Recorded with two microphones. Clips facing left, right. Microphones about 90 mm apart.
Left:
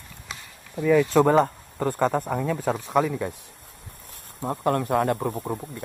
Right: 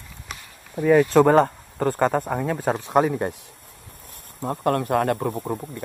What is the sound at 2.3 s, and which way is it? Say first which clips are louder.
Speech: right 2 dB; 50° right (ahead or behind).